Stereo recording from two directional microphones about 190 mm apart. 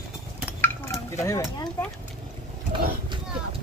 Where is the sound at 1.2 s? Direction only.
15° left (ahead or behind).